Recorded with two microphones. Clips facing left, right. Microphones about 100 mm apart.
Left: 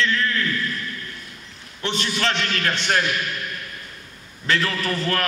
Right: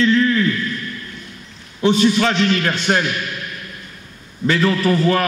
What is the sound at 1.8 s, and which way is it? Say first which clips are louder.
A man's voice: right 10 dB; 10° right (ahead or behind).